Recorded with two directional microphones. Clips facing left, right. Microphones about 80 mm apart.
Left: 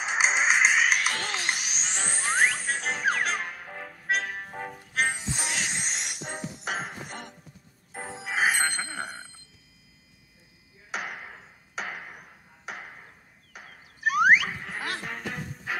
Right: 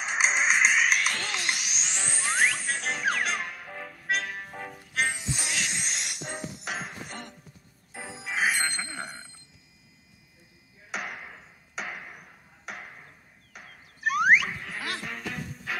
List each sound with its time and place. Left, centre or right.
0.2 s music: centre
1.1 s music: left
7.9 s music: left
8.3 s music: left
11.0 s a sound: centre